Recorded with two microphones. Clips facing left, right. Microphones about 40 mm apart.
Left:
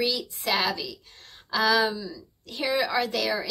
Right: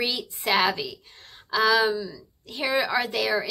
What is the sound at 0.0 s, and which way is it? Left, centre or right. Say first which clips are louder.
Speech: even; right.